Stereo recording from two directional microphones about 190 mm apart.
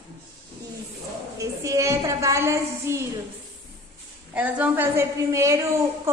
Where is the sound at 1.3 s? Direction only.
15° right (ahead or behind).